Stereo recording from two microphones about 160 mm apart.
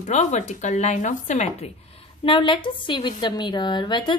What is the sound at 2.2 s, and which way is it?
A woman's voice, 35° left (ahead or behind).